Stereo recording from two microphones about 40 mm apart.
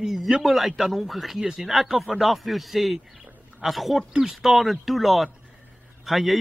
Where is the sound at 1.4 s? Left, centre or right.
Centre.